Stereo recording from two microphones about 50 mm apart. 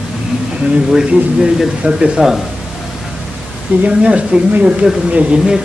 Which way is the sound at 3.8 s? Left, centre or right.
Right.